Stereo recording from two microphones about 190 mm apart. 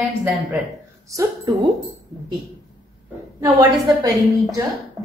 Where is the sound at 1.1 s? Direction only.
20° right (ahead or behind).